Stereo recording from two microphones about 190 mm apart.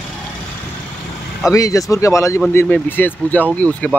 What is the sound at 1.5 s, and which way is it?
Speech, 15° left (ahead or behind).